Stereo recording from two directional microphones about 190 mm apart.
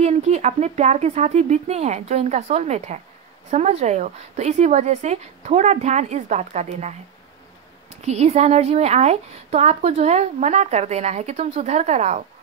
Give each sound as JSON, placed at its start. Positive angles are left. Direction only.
{"t": 0.0, "sound": "a woman's voice", "side_deg": -35}